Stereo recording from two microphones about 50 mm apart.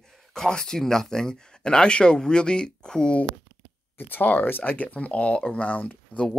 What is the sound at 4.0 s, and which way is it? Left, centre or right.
Speech, left.